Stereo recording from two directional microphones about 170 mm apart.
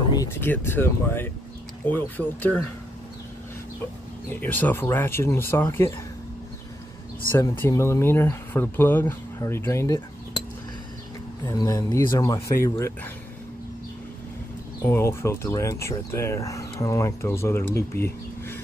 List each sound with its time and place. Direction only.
0.1 s speech: 15° left (ahead or behind)
4.4 s speech: 10° left (ahead or behind)
7.3 s speech: 15° left (ahead or behind)
11.4 s speech: 20° left (ahead or behind)
14.9 s speech: 15° left (ahead or behind)